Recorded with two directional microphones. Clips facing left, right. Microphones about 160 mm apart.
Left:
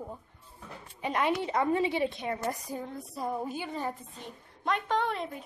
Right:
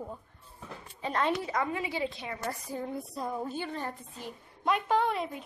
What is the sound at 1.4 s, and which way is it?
A woman's voice, 25° left (ahead or behind).